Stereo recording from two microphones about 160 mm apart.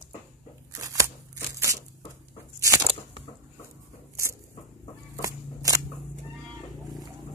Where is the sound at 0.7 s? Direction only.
20° right (ahead or behind).